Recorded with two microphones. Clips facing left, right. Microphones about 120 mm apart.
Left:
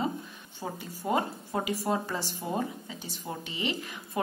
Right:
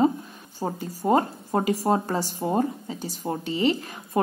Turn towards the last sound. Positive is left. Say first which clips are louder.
# right 10 dB
turn(degrees=-40)  # may be behind; listen again after turning